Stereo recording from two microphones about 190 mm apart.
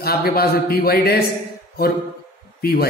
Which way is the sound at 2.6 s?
55° left (ahead or behind).